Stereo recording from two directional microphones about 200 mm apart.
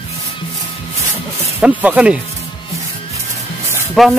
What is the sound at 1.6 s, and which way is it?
Speech, 5° right (ahead or behind).